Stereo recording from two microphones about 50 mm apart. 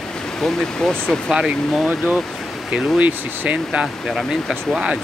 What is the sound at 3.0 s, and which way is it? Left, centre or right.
Speech, right.